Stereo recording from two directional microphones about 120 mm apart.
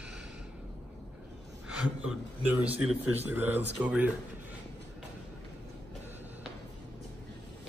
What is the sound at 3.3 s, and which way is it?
Speech, 15° right (ahead or behind).